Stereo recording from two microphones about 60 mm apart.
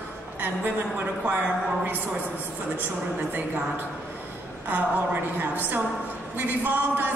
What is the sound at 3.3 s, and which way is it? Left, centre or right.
A woman's voice, right.